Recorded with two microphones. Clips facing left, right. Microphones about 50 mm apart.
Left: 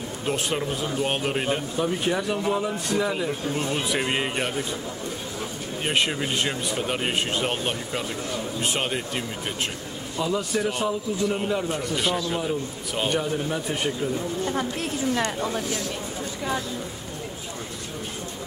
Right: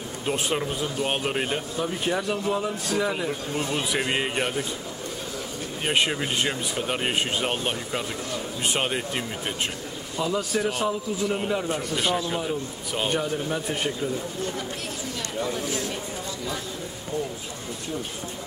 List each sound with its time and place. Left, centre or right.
0.3 s speech: centre
2.3 s speech: centre
2.6 s speech: centre
5.9 s speech: centre
15.2 s speech: left